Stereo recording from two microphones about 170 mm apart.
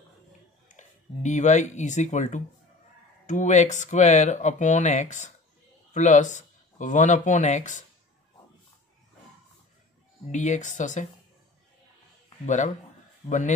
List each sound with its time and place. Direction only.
0.7 s speech: 45° left (ahead or behind)
10.3 s speech: 45° left (ahead or behind)
12.4 s speech: 45° left (ahead or behind)